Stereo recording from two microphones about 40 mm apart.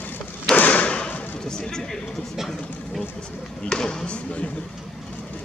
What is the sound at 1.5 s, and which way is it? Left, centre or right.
Speech, centre.